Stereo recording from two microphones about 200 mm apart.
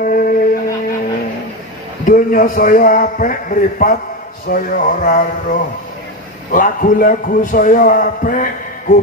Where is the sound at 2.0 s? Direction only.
45° left (ahead or behind).